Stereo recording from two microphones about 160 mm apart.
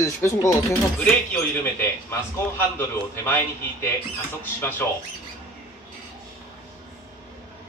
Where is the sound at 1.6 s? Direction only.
15° left (ahead or behind).